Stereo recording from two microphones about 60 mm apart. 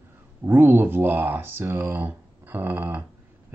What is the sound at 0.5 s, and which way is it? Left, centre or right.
Speech, right.